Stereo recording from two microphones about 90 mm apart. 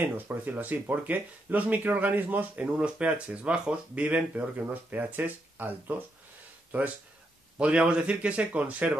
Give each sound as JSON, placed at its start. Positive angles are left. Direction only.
{"t": 0.0, "sound": "speech", "side_deg": -20}
{"t": 7.5, "sound": "speech", "side_deg": -10}